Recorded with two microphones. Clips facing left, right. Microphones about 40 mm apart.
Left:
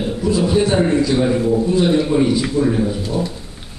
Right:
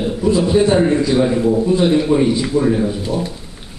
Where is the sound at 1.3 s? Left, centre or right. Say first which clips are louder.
Right 1 dB; centre.